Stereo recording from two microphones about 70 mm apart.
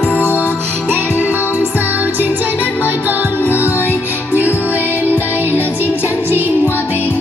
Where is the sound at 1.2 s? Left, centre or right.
Right.